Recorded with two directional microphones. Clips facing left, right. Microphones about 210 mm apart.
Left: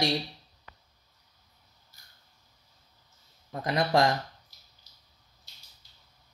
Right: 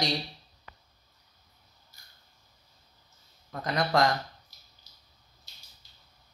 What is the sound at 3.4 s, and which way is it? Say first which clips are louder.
Speech: left 2 dB; 25° left (ahead or behind).